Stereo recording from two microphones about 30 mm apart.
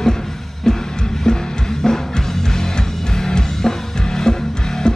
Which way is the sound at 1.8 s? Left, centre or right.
Left.